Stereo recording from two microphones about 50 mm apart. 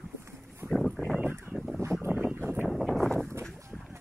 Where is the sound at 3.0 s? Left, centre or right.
Centre.